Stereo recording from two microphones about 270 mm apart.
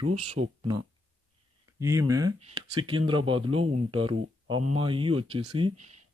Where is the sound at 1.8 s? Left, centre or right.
Centre.